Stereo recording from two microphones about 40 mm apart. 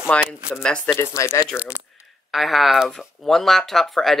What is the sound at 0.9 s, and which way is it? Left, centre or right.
Speech, left.